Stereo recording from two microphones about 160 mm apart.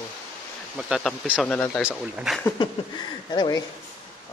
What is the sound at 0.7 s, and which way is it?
Speech, 5° right (ahead or behind).